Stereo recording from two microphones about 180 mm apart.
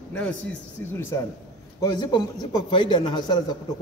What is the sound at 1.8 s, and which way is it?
A man's voice, 25° left (ahead or behind).